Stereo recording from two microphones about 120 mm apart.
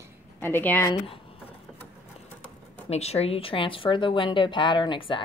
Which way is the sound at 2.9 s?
60° left (ahead or behind).